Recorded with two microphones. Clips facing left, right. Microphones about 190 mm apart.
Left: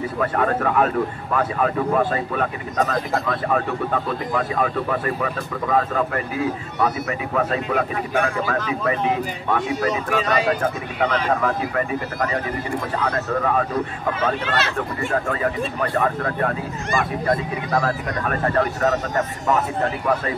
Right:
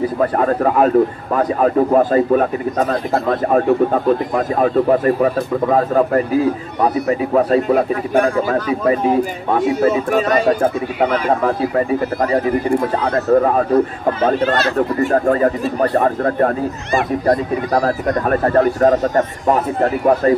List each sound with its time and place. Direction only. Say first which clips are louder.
0.2 s a man's voice: right 4 dB; 35° right (ahead or behind)
11.4 s a man's voice: right 6 dB; 30° right (ahead or behind)